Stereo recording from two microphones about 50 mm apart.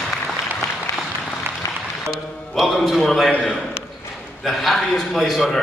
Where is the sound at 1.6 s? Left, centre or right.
Left.